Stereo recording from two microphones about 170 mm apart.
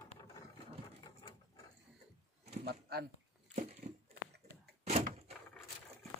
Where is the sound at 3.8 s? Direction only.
45° right (ahead or behind).